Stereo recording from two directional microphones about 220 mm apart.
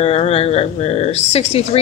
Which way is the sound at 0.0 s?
25° left (ahead or behind).